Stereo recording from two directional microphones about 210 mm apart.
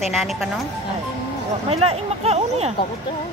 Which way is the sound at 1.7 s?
30° right (ahead or behind).